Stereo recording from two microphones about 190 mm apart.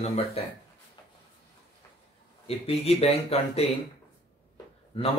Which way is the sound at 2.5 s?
30° left (ahead or behind).